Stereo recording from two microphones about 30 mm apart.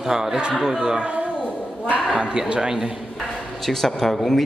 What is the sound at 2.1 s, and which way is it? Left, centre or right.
Speech, right.